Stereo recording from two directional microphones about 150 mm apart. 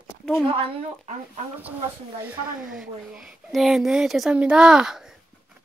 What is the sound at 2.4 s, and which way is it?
Speech, 65° right (ahead or behind).